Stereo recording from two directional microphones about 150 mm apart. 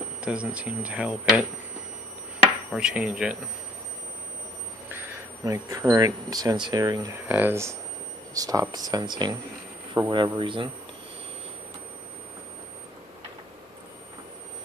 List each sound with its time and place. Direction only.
0.2 s speech: 5° right (ahead or behind)
2.7 s speech: 5° right (ahead or behind)
5.4 s speech: 20° right (ahead or behind)
7.2 s a man's voice: 15° right (ahead or behind); by 10.7 s 35° right (ahead or behind)